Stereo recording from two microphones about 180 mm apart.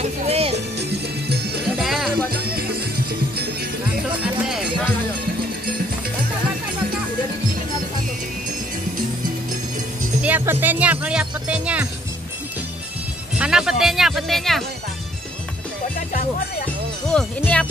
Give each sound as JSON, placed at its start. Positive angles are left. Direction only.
{"t": 0.3, "sound": "music", "side_deg": -35}
{"t": 0.7, "sound": "music", "side_deg": -65}
{"t": 1.8, "sound": "music", "side_deg": 0}
{"t": 10.2, "sound": "speech", "side_deg": -10}
{"t": 13.4, "sound": "speech", "side_deg": -5}
{"t": 17.1, "sound": "speech", "side_deg": 5}